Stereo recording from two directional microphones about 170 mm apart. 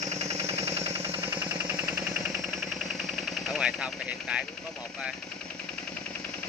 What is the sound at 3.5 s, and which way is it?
Speech, 5° right (ahead or behind).